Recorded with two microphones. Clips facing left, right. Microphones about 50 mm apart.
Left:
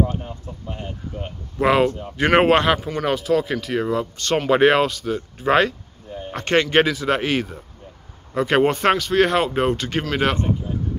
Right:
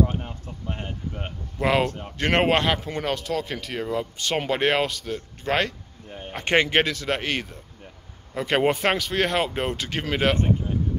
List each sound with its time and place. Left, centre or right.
0.2 s a sound: right
1.6 s speech: centre
4.5 s speech: centre
6.0 s a sound: right
6.3 s speech: centre
6.7 s speech: centre